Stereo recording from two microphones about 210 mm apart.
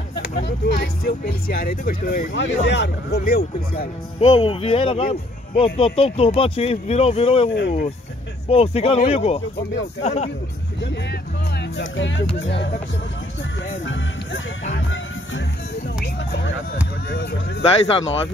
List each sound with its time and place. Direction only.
0.2 s speech: 55° left (ahead or behind)
4.2 s speech: 25° left (ahead or behind)
10.8 s speech: 55° left (ahead or behind)
13.7 s music: 65° left (ahead or behind)
17.1 s speech: 50° left (ahead or behind)
17.6 s speech: 25° left (ahead or behind)